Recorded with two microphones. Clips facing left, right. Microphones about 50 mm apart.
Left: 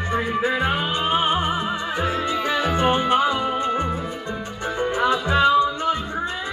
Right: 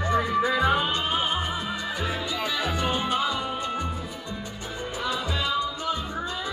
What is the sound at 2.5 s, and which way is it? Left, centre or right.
Music, left.